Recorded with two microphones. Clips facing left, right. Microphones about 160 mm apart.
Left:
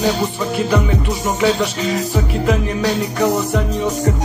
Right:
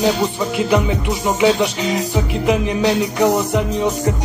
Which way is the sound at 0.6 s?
15° right (ahead or behind).